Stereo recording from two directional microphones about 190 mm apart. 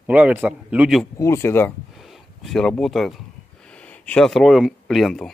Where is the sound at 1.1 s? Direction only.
15° left (ahead or behind).